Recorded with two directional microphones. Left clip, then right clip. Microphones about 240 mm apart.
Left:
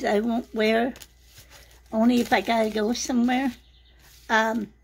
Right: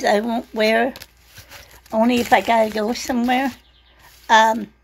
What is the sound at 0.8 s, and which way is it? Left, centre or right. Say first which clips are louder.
Shuffling cards: right 6 dB; centre.